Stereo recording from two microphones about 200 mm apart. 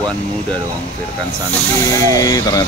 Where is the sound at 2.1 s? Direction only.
20° left (ahead or behind).